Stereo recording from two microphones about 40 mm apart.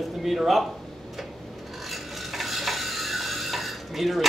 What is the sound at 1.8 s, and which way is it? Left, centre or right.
Stir, centre.